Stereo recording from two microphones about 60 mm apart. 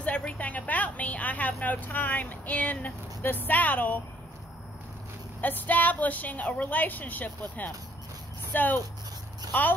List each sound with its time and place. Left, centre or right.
0.0 s a woman's voice: left
5.4 s a woman's voice: left